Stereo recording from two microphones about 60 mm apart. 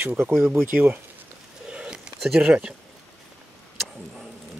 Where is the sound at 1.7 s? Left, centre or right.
Centre.